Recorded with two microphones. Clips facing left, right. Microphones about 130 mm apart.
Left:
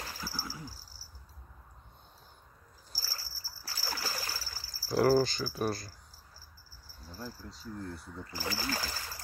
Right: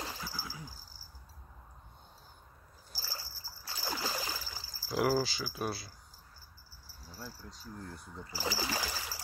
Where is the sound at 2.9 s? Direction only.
25° right (ahead or behind).